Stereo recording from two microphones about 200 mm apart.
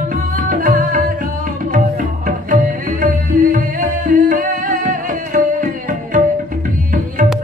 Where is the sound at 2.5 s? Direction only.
40° right (ahead or behind).